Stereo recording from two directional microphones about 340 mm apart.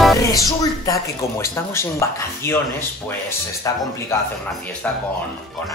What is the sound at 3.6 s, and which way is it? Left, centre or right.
Speech, centre.